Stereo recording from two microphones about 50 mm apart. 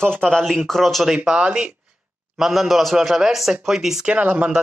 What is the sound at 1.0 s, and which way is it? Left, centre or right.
Speech, centre.